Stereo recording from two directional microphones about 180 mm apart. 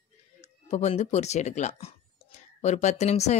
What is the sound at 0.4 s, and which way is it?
Speech, 35° left (ahead or behind).